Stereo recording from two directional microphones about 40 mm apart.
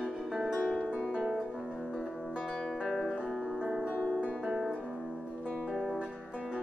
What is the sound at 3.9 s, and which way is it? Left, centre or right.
Music, left.